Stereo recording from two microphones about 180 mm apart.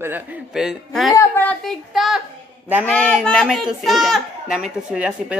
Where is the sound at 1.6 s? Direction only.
Centre (ahead or behind).